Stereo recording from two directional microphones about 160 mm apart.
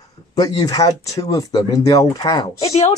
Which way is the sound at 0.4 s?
25° left (ahead or behind).